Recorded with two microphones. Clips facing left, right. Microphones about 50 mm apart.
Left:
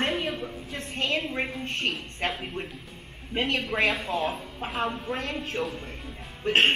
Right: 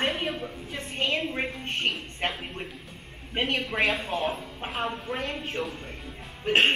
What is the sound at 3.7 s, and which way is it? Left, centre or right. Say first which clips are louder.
A man's voice: left 1 dB; centre.